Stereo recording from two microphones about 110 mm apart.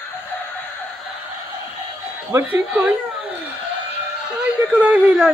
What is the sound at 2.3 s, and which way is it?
Speech, 15° right (ahead or behind).